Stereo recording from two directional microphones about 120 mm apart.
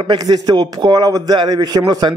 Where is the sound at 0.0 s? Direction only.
35° right (ahead or behind).